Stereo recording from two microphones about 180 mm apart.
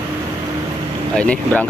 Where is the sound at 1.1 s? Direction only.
5° left (ahead or behind).